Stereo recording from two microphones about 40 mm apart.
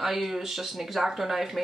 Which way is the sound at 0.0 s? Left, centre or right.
Centre.